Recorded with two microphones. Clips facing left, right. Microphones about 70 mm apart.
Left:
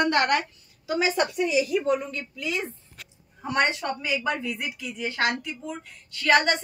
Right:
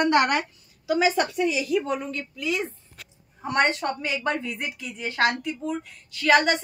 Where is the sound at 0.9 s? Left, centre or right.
Centre.